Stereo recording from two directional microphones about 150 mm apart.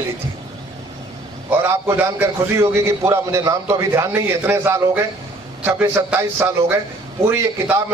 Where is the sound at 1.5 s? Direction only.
20° right (ahead or behind).